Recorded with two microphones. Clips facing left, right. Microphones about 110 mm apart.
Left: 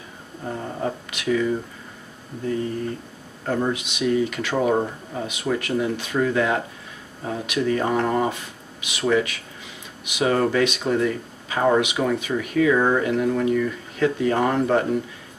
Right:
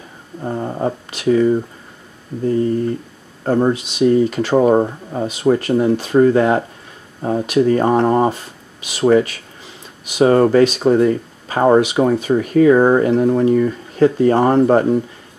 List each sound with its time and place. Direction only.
0.4 s speech: 35° right (ahead or behind)
3.4 s speech: 35° right (ahead or behind)